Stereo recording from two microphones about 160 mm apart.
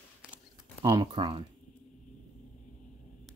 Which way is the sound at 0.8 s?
25° right (ahead or behind).